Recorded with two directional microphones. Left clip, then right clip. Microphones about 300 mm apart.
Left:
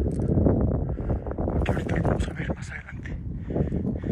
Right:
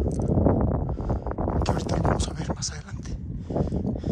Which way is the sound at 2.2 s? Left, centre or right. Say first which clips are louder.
Right 1 dB; right.